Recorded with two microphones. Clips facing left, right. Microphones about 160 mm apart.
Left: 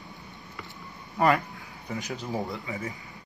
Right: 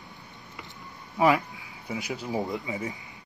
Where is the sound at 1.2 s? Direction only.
5° right (ahead or behind).